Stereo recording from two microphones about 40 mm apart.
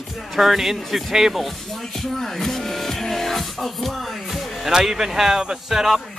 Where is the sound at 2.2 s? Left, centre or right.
Centre.